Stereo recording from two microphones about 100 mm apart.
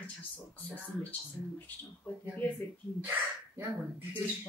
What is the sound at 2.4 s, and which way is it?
Speech, 15° left (ahead or behind).